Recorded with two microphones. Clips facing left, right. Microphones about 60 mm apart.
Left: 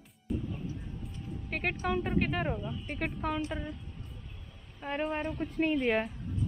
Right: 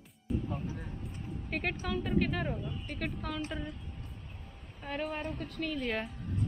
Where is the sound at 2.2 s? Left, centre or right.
Centre.